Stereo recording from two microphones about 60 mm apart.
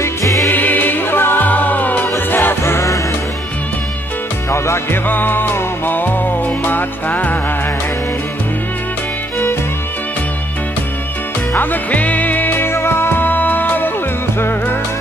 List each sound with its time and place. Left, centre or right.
0.0 s music: left
0.5 s music: left
4.5 s music: left
5.0 s music: left
11.5 s music: left